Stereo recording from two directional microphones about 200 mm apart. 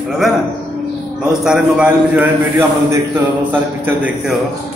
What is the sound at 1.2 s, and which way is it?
A man's voice, 5° right (ahead or behind).